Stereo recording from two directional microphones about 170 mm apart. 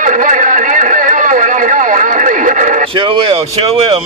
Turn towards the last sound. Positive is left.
turn(degrees=-35)  # may be behind; listen again after turning